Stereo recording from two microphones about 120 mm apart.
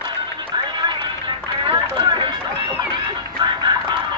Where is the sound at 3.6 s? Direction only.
40° right (ahead or behind).